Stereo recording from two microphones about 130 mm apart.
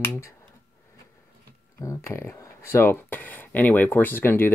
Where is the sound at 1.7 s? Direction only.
25° left (ahead or behind).